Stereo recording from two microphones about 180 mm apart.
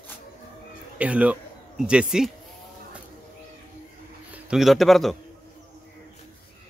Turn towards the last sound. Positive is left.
turn(degrees=0)  # may be behind; listen again after turning